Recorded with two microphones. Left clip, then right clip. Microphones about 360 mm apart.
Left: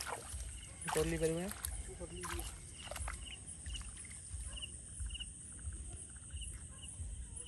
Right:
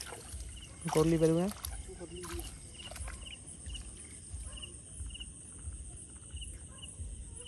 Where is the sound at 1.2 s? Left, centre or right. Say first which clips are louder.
Right 8 dB; centre.